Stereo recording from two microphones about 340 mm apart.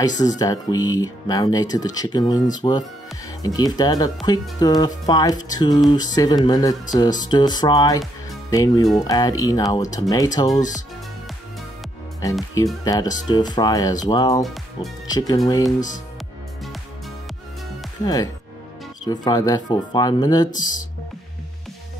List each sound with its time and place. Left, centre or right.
0.4 s speech: centre
8.0 s music: centre
8.8 s speech: centre
12.2 s speech: centre
14.4 s speech: centre
15.0 s speech: centre
18.0 s speech: centre